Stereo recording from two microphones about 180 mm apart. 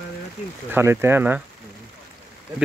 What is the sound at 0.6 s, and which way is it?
Speech, 10° right (ahead or behind).